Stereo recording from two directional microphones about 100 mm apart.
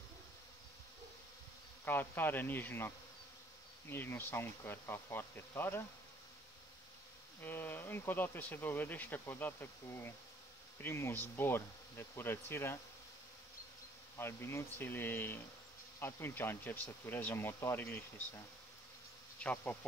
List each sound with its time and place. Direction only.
1.9 s speech: 20° left (ahead or behind)
7.4 s speech: 20° left (ahead or behind)
14.1 s speech: 25° left (ahead or behind)
19.4 s insect: 15° left (ahead or behind)